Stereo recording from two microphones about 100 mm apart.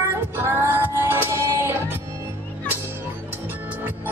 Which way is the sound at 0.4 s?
25° right (ahead or behind).